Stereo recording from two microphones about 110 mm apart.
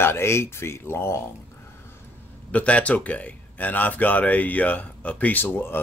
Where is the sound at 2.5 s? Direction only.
10° left (ahead or behind).